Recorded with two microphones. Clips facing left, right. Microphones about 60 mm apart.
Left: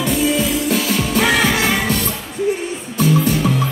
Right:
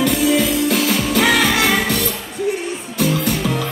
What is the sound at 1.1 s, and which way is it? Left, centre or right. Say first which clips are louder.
Music: even; left.